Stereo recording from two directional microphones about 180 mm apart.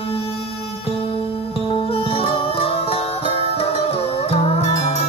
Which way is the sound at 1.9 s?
30° left (ahead or behind).